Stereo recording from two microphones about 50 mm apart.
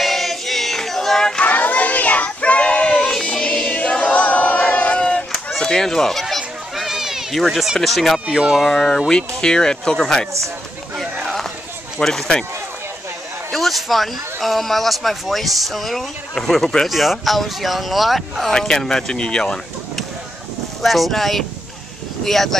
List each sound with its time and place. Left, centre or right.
0.0 s choir: centre
1.4 s child singing: left; by 3.7 s centre
3.7 s a sound: left
5.0 s run: centre
5.6 s speech: centre
6.2 s children playing: centre
7.3 s speech: centre
8.3 s speech: centre
8.5 s speech: centre
12.0 s speech: centre
13.5 s speech: centre
18.5 s speech: centre
20.8 s speech: centre